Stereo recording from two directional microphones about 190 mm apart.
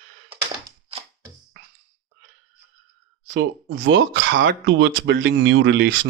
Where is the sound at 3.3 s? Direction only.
80° right.